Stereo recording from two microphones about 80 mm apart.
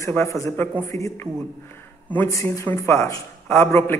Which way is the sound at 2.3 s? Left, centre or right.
Left.